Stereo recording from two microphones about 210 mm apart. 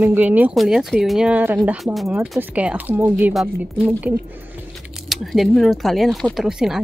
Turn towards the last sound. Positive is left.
turn(degrees=0)  # may be behind; listen again after turning